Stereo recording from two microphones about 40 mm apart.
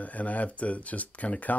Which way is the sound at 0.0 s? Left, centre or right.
Left.